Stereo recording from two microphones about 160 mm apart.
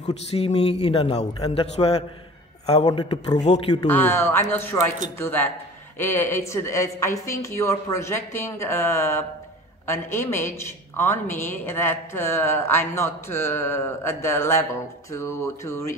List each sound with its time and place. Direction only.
0.0 s a man's voice: 40° left (ahead or behind)
2.9 s a man's voice: 25° left (ahead or behind)
3.3 s a man's voice: 45° left (ahead or behind)
3.8 s a woman's voice: 15° left (ahead or behind)